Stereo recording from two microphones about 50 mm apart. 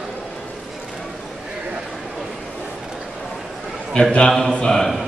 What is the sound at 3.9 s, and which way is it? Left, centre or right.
A man's voice, centre.